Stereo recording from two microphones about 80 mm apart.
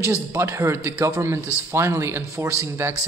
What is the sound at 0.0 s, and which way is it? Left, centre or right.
Speech, right.